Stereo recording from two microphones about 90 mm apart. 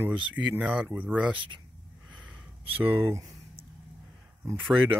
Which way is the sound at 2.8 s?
25° right (ahead or behind).